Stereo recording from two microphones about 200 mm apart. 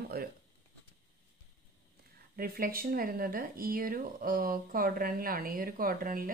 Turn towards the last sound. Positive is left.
turn(degrees=-45)  # may be behind; listen again after turning